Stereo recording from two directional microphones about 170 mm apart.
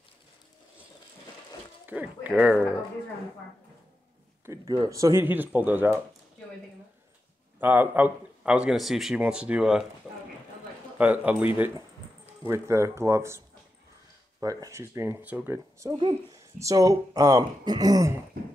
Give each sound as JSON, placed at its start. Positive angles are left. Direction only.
{"t": 1.9, "sound": "speech", "side_deg": -10}
{"t": 4.5, "sound": "speech", "side_deg": -20}
{"t": 7.6, "sound": "a man's voice", "side_deg": -10}
{"t": 11.0, "sound": "speech", "side_deg": -10}
{"t": 14.4, "sound": "speech", "side_deg": -20}